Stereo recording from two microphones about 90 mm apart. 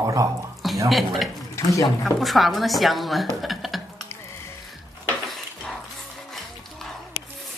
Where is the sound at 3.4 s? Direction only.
Centre (ahead or behind).